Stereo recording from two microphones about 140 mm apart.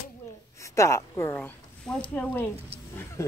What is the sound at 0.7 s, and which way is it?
Speech, 20° left (ahead or behind).